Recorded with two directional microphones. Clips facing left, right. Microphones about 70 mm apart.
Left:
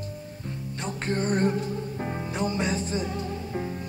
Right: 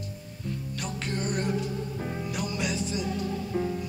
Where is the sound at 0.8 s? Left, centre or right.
Left.